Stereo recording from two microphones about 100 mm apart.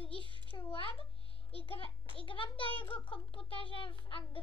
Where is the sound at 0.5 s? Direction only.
65° left (ahead or behind).